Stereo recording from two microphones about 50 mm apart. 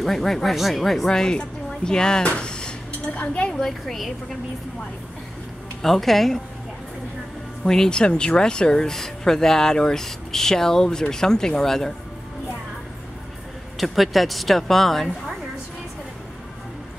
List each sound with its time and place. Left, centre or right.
0.0 s speech: centre
2.2 s a sound: centre
3.2 s a woman's voice: left
3.5 s speech: centre
5.8 s speech: centre
7.6 s speech: centre
13.7 s speech: centre